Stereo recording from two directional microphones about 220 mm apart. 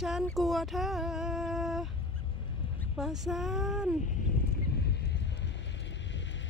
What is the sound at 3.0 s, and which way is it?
Speech, centre (ahead or behind).